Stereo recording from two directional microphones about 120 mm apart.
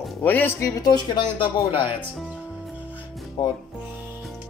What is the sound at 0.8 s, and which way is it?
Speech, 35° left (ahead or behind).